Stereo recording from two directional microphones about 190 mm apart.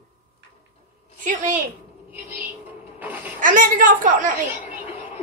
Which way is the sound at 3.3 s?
45° right (ahead or behind).